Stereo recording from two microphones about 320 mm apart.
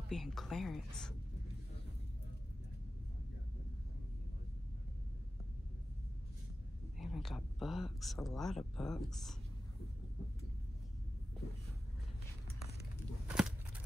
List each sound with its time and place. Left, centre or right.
0.1 s speech: centre
7.0 s speech: centre
13.3 s a sound: centre